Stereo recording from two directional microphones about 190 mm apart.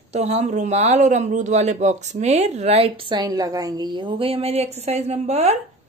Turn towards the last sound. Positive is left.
turn(degrees=-35)  # may be behind; listen again after turning